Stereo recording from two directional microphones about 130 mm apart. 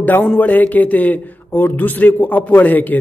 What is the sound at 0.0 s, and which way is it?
Speech, 10° left (ahead or behind).